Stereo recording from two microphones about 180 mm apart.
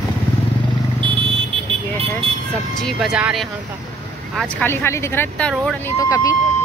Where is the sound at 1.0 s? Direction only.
30° right (ahead or behind).